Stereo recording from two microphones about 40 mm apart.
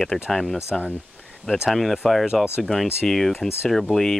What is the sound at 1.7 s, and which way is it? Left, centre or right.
Speech, centre.